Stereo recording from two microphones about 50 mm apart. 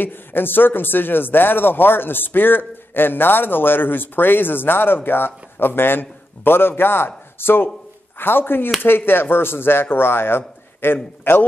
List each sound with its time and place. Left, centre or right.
0.0 s a man's voice: left